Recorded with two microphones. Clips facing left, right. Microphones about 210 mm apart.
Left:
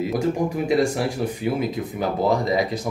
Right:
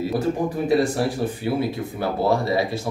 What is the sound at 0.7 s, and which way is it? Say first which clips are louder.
Speech: right 2 dB; 15° left (ahead or behind).